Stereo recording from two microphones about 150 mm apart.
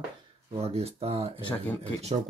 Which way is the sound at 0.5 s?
40° right (ahead or behind).